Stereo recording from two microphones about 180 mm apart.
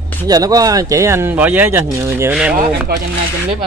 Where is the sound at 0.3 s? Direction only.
20° right (ahead or behind).